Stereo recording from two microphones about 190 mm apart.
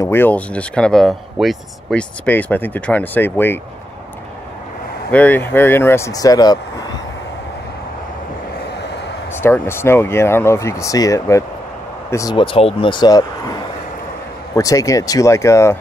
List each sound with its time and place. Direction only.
0.0 s speech: 10° left (ahead or behind)
5.1 s speech: 10° left (ahead or behind)
9.4 s speech: 10° left (ahead or behind)